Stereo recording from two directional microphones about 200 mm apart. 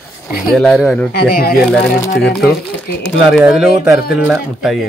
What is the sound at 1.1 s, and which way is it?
Speech, 50° left (ahead or behind).